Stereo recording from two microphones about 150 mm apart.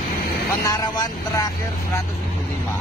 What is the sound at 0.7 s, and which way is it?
Speech, 25° left (ahead or behind).